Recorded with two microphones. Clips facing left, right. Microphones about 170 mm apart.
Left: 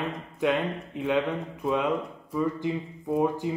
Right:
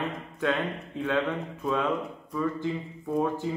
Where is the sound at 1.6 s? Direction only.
20° left (ahead or behind).